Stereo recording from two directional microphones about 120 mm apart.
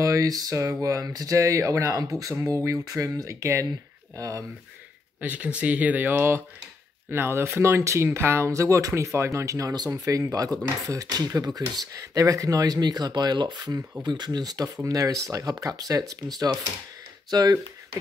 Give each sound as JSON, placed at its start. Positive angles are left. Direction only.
{"t": 0.0, "sound": "a sound", "side_deg": -30}
{"t": 0.8, "sound": "speech", "side_deg": -30}
{"t": 5.2, "sound": "speech", "side_deg": -15}